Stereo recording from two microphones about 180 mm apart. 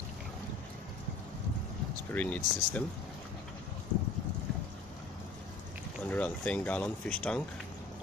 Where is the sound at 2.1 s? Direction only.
10° left (ahead or behind).